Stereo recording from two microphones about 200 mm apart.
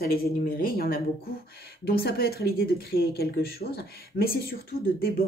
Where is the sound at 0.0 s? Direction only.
50° left (ahead or behind).